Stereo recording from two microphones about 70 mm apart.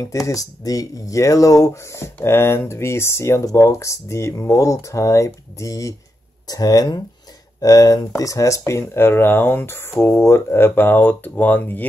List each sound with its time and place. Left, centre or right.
0.0 s speech: left
6.4 s speech: left